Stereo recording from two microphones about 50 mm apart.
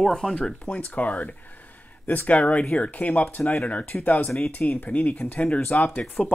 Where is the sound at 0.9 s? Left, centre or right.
Left.